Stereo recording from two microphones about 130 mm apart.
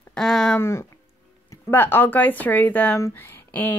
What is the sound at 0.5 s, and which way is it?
A woman's voice, 20° left (ahead or behind).